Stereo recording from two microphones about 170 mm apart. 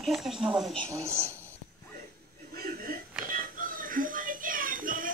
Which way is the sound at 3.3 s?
55° right (ahead or behind).